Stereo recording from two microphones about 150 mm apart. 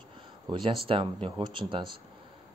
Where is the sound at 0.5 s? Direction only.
35° right (ahead or behind).